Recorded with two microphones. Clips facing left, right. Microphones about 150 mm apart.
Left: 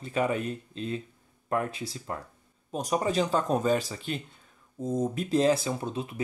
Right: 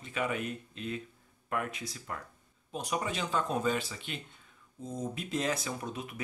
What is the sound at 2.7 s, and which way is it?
Speech, 40° left (ahead or behind).